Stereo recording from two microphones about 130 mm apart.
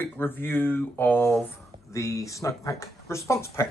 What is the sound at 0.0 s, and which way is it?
Speech, 15° left (ahead or behind).